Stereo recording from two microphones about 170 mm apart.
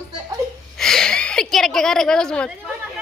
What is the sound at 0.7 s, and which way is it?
A woman's voice, 5° left (ahead or behind).